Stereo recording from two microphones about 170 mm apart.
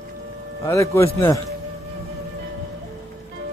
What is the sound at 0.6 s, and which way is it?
Speech, 15° left (ahead or behind).